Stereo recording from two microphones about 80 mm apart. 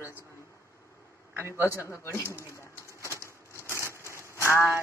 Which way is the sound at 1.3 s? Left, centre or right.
Right.